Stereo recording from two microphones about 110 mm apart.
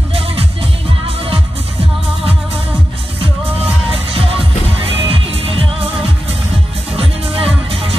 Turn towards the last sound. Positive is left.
turn(degrees=-60)  # may be behind; listen again after turning